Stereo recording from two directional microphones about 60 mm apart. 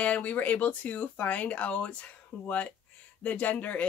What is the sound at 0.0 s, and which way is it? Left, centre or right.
Speech, left.